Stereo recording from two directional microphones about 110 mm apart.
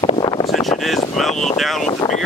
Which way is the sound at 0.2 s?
40° left (ahead or behind).